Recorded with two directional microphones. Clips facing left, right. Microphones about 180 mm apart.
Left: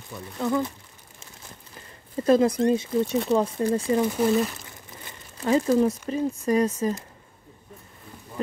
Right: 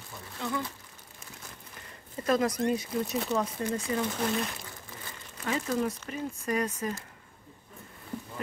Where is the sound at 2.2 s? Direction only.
30° left (ahead or behind).